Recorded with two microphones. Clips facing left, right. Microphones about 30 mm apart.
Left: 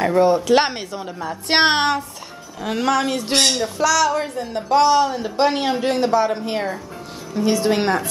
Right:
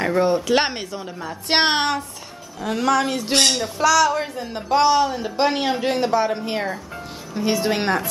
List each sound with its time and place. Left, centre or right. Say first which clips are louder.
0.0 s speech: left 3 dB; centre